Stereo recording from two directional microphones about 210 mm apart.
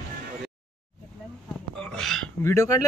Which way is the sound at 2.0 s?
Centre (ahead or behind).